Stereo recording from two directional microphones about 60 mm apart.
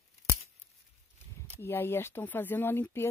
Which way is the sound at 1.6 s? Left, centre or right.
Left.